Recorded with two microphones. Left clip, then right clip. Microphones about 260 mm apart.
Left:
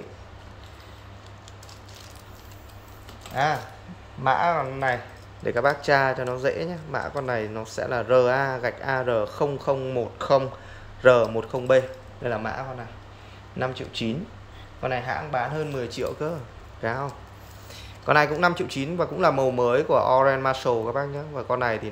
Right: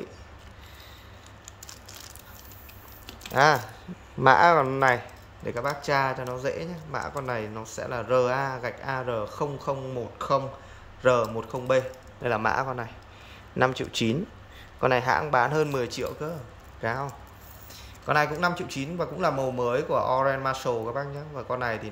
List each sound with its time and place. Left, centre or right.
4.2 s speech: right
5.4 s speech: centre